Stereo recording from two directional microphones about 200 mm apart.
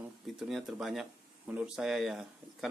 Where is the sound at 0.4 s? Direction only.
Centre (ahead or behind).